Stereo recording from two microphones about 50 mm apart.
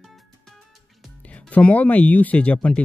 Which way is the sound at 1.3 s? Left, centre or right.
Left.